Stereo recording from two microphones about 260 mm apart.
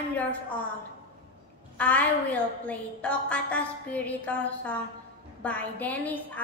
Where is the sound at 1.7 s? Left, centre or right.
Centre.